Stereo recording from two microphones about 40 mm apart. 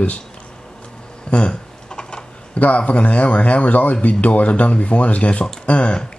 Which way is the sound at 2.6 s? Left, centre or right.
Left.